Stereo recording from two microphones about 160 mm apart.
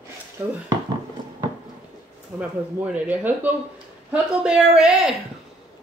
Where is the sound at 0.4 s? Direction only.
10° right (ahead or behind).